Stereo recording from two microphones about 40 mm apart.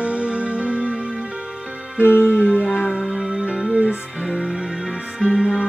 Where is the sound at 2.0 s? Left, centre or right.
Left.